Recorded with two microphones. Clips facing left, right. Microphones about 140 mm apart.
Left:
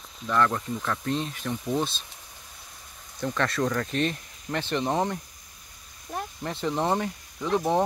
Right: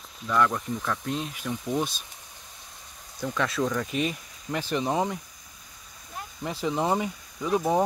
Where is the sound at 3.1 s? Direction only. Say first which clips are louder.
Left 1 dB; 5° right (ahead or behind).